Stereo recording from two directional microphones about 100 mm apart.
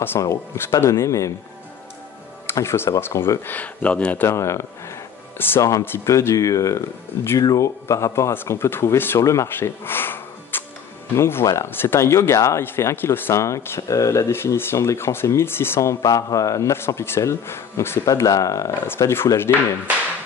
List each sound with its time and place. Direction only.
0.2 s speech: 30° left (ahead or behind)
2.5 s speech: 25° left (ahead or behind)
4.3 s speech: 30° left (ahead or behind)
18.0 s speech: 35° left (ahead or behind)